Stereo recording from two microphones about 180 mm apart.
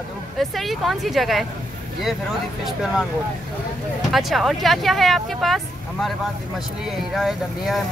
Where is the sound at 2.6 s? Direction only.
Centre (ahead or behind).